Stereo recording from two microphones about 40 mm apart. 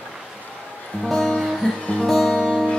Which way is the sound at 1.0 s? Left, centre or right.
Centre.